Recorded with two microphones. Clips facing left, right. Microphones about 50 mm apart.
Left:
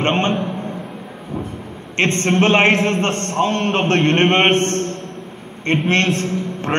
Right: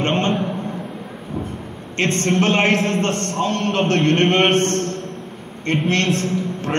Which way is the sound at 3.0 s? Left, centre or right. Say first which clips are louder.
Left 2 dB; left.